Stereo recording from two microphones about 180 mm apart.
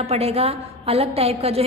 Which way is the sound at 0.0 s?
35° right (ahead or behind).